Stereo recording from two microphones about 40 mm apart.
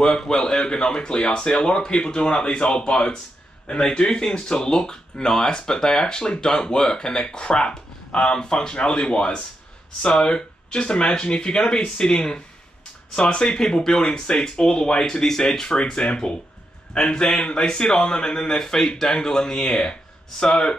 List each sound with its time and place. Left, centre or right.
0.0 s speech: centre
19.8 s a sound: left
20.4 s speech: left